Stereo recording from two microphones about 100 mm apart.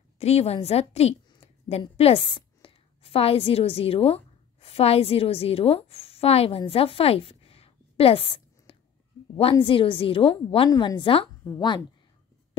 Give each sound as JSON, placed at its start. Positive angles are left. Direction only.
{"t": 0.2, "sound": "a woman's voice", "side_deg": 90}
{"t": 2.2, "sound": "a woman's voice", "side_deg": 60}
{"t": 9.4, "sound": "a woman's voice", "side_deg": 65}
{"t": 10.7, "sound": "a woman's voice", "side_deg": 45}